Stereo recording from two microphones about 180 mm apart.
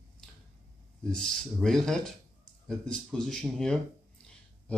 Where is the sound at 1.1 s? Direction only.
Centre (ahead or behind).